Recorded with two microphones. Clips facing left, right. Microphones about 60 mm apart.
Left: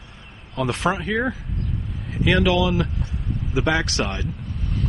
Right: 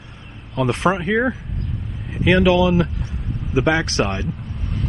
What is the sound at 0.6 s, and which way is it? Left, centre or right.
A man's voice, right.